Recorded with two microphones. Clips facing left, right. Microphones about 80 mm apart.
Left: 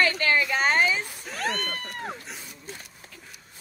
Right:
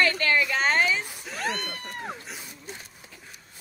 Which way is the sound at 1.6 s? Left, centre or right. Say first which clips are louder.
Left 2 dB; left.